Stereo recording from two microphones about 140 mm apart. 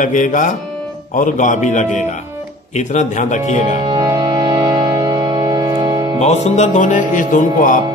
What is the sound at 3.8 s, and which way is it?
Music, 30° right (ahead or behind).